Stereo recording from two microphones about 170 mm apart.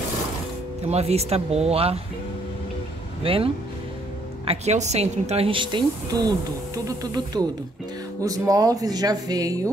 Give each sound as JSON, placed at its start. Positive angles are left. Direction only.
{"t": 0.8, "sound": "speech", "side_deg": -40}
{"t": 3.3, "sound": "speech", "side_deg": -35}
{"t": 4.5, "sound": "speech", "side_deg": -40}